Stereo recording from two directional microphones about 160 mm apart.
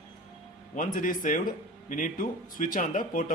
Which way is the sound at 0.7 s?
55° left (ahead or behind).